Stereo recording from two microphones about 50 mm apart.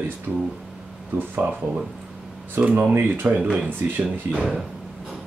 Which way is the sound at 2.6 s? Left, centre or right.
Right.